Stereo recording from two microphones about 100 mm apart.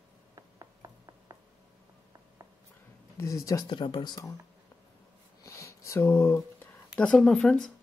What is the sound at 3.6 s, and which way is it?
Speech, 55° left (ahead or behind).